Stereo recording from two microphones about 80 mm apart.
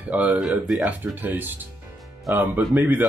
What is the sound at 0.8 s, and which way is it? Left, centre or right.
Speech, right.